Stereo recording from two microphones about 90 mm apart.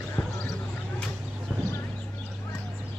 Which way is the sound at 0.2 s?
25° left (ahead or behind).